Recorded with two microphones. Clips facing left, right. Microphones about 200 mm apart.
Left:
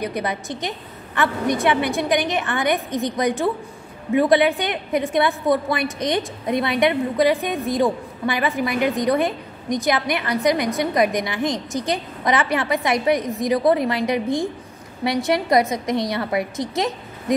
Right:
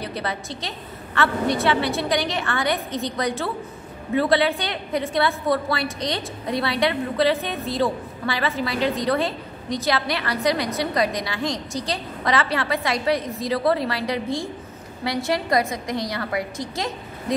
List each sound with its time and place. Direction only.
0.0 s a woman's voice: 15° left (ahead or behind)